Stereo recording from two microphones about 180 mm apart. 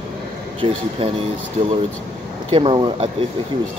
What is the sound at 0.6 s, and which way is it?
Speech, 30° right (ahead or behind).